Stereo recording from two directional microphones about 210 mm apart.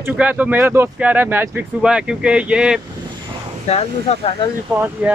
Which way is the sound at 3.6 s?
30° left (ahead or behind).